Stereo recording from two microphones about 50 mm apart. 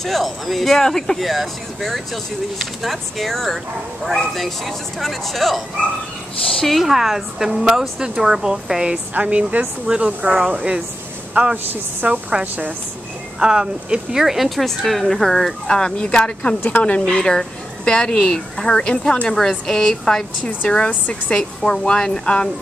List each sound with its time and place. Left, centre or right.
0.0 s speech: centre
6.6 s a woman's voice: centre
9.1 s speech: right
11.5 s speech: right
12.1 s a woman's voice: right
14.2 s speech: centre
15.7 s speech: centre
17.0 s speech: centre